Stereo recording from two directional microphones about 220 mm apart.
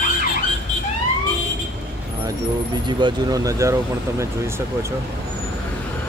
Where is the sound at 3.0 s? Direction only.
15° right (ahead or behind).